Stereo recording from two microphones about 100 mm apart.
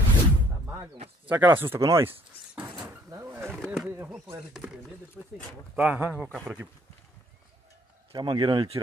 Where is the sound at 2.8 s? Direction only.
30° right (ahead or behind).